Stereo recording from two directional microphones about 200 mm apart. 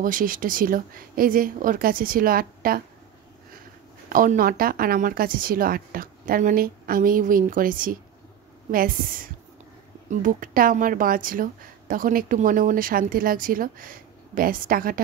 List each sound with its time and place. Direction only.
0.0 s a woman's voice: 45° right (ahead or behind)
4.1 s a woman's voice: 45° right (ahead or behind)